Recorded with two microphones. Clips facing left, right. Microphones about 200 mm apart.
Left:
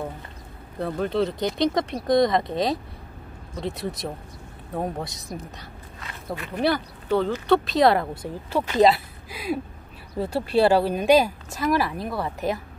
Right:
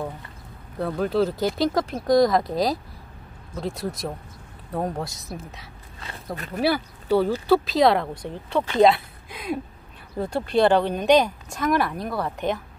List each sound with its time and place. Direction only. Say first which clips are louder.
0.7 s speech: right 2 dB; centre (ahead or behind)
6.3 s speech: even; 40° right (ahead or behind)
6.6 s speech: right 1 dB; 10° right (ahead or behind)